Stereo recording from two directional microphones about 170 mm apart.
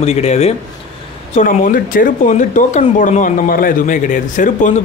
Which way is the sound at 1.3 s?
50° left (ahead or behind).